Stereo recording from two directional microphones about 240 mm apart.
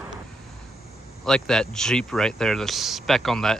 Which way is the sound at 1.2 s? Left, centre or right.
Centre.